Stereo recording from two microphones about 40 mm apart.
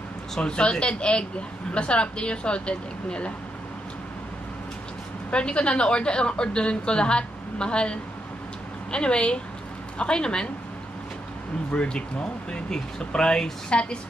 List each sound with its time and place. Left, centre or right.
0.4 s a woman's voice: left
5.3 s a woman's voice: left
11.7 s a woman's voice: left